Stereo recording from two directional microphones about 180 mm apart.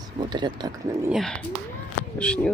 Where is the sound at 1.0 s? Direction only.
Centre (ahead or behind).